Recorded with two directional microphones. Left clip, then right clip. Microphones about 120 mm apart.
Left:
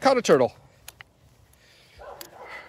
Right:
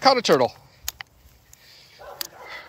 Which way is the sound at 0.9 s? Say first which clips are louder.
Right 11 dB; 90° right.